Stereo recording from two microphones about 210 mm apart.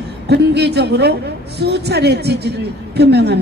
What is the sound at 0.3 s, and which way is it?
A woman's voice, 55° right (ahead or behind).